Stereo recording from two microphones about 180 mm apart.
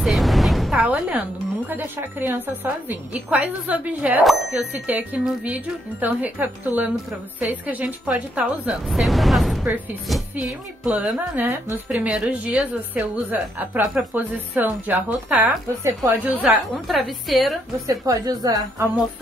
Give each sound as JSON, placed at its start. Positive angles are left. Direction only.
{"t": 0.0, "sound": "a sound", "side_deg": 0}
{"t": 1.7, "sound": "speech", "side_deg": -10}
{"t": 17.8, "sound": "a woman's voice", "side_deg": -20}